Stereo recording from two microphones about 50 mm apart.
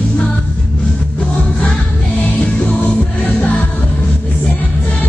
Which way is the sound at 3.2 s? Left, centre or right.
Left.